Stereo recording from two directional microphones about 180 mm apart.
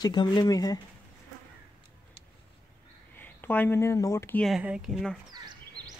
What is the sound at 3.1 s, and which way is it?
Speech, 10° left (ahead or behind).